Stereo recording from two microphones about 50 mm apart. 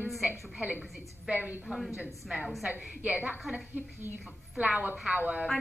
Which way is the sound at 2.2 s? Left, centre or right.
Centre.